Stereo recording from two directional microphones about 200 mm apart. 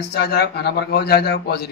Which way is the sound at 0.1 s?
55° left (ahead or behind).